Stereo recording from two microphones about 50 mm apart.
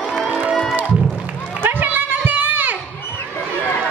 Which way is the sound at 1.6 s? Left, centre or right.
Right.